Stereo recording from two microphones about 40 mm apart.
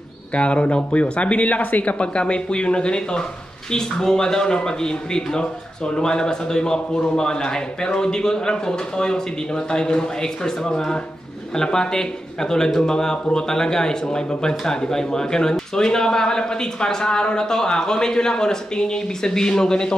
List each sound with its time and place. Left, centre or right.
0.3 s speech: left
2.0 s a man's voice: left